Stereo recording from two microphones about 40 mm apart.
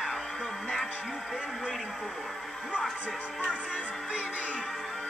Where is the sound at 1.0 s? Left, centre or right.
Centre.